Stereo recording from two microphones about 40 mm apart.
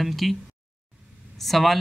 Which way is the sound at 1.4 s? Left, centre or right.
Centre.